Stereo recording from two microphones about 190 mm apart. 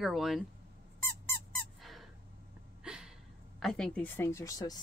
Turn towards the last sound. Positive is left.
turn(degrees=15)  # may be behind; listen again after turning